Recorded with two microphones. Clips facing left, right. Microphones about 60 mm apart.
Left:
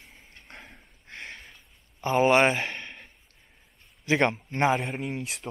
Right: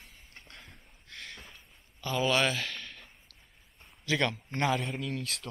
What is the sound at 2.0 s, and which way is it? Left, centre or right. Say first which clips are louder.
Speech: left 8 dB; left.